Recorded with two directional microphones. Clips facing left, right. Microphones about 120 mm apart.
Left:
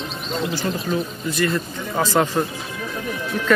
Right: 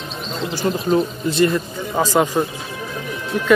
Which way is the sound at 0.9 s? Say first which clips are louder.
Right 6 dB; 30° right (ahead or behind).